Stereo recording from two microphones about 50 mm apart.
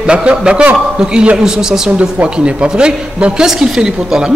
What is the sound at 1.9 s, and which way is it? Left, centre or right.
Speech, right.